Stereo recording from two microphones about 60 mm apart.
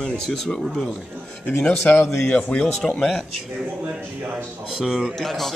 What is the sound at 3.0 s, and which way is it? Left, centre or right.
Speech, centre.